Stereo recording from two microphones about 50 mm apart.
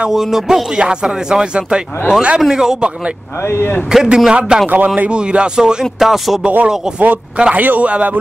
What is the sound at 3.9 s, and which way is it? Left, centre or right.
Speech, centre.